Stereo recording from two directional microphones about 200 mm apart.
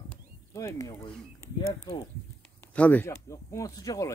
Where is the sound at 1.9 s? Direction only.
15° left (ahead or behind).